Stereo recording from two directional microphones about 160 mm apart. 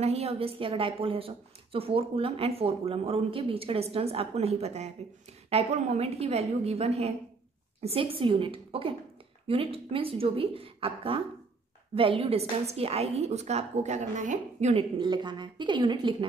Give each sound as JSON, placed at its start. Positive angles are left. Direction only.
{"t": 0.0, "sound": "a woman's voice", "side_deg": -40}